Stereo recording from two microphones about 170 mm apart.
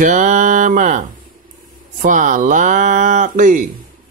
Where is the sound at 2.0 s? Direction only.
50° right (ahead or behind).